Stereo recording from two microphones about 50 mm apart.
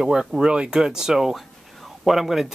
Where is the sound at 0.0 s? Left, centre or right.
Centre.